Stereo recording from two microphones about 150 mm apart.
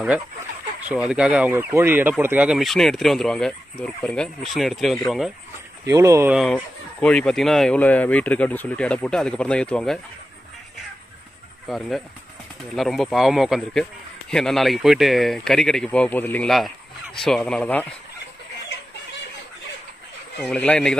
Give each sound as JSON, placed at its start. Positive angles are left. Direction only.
{"t": 0.8, "sound": "speech", "side_deg": -10}
{"t": 5.9, "sound": "speech", "side_deg": -20}
{"t": 6.3, "sound": "speech", "side_deg": 0}
{"t": 11.6, "sound": "speech", "side_deg": 0}
{"t": 20.4, "sound": "speech", "side_deg": 5}